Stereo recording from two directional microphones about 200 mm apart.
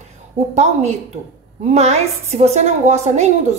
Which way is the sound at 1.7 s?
35° right (ahead or behind).